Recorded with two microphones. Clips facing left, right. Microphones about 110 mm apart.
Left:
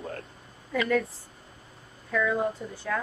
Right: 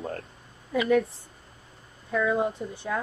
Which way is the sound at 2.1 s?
25° right (ahead or behind).